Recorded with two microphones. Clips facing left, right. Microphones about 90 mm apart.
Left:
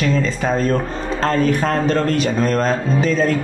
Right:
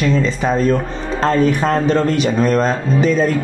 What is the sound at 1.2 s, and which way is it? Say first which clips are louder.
Speech: right 3 dB; 20° right (ahead or behind).